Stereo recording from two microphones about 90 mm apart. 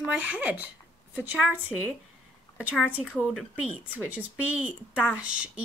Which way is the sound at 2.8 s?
10° right (ahead or behind).